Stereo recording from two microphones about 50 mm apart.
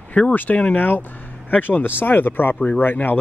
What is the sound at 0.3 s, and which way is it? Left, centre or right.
Speech, left.